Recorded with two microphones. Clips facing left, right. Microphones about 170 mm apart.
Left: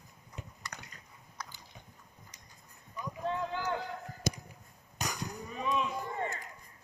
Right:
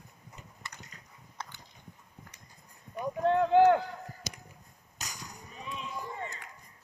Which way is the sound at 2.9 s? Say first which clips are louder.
Right 9 dB; 60° right (ahead or behind).